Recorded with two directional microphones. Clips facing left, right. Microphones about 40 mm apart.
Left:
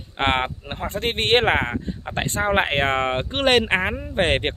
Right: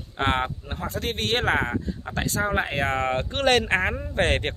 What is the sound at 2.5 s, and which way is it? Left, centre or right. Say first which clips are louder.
Speech: left 5 dB; left.